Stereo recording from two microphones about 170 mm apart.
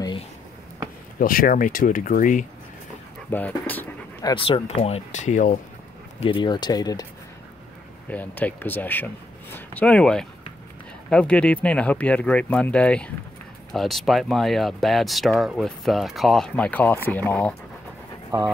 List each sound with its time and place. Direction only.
1.2 s speech: 55° left (ahead or behind)
3.3 s speech: 10° left (ahead or behind)
4.2 s speech: 25° left (ahead or behind)
4.6 s speech: 35° left (ahead or behind)
6.1 s speech: 30° left (ahead or behind)
8.1 s speech: 10° left (ahead or behind)